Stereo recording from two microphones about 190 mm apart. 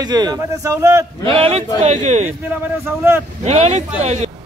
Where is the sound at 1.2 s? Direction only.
30° right (ahead or behind).